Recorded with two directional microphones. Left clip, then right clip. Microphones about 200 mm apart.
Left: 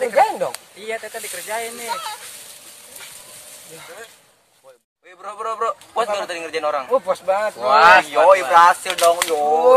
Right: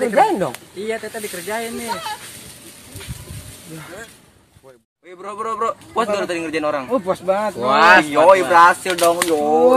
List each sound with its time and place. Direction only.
0.0 s speech: 5° right (ahead or behind)
5.2 s speech: 10° right (ahead or behind)
6.9 s speech: 20° left (ahead or behind)
7.5 s speech: 15° right (ahead or behind)
8.8 s speech: 5° left (ahead or behind)
9.3 s speech: 10° right (ahead or behind)